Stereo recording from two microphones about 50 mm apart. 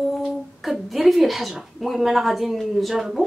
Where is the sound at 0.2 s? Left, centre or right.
Centre.